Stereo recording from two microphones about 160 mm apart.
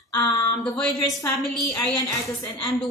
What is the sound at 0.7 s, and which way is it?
Speech, 5° left (ahead or behind).